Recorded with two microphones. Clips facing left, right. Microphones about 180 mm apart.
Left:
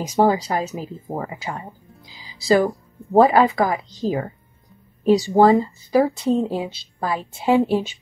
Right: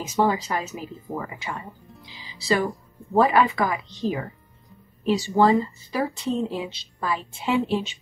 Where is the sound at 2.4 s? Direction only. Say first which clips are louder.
Left 6 dB; 40° left (ahead or behind).